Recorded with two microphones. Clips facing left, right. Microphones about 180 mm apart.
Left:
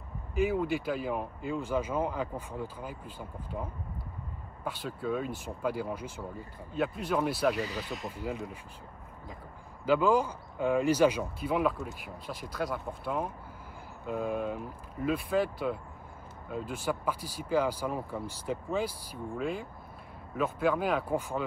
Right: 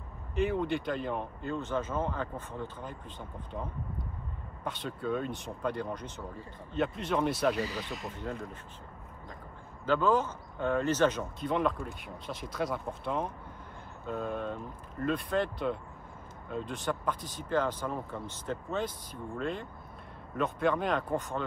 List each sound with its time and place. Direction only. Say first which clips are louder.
0.3 s speech: left 1 dB; 5° left (ahead or behind)
4.6 s speech: even; centre (ahead or behind)
9.8 s speech: left 2 dB; 10° left (ahead or behind)